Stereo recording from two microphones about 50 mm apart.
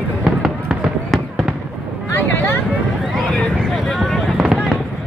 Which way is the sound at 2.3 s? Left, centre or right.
Left.